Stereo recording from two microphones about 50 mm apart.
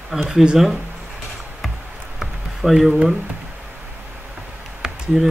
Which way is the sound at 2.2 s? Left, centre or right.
Centre.